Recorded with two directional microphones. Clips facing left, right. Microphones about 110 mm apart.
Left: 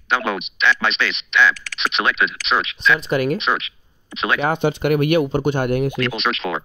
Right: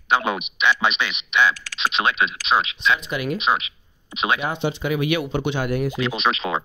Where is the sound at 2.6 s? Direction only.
25° right (ahead or behind).